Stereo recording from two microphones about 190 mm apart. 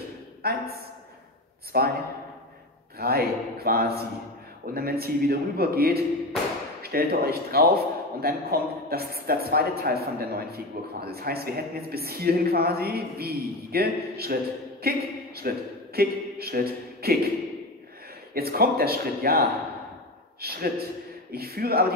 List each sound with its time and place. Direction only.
0.4 s a man's voice: 55° right (ahead or behind)
1.7 s a man's voice: 50° right (ahead or behind)
3.0 s a man's voice: 55° right (ahead or behind)
18.3 s a man's voice: 55° right (ahead or behind)